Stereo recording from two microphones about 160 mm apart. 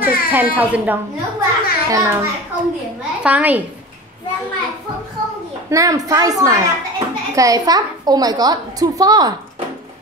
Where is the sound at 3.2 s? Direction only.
10° right (ahead or behind).